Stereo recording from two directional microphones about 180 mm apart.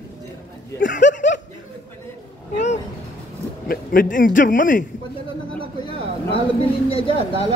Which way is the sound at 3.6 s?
55° left (ahead or behind).